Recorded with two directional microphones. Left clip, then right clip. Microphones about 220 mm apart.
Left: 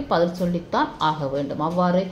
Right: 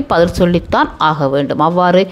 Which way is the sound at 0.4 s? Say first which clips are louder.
Right 10 dB; 40° right (ahead or behind).